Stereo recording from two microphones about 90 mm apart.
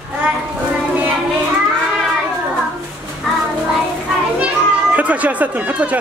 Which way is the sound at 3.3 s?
Centre (ahead or behind).